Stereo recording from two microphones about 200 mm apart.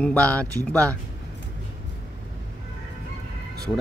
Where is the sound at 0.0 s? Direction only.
5° left (ahead or behind).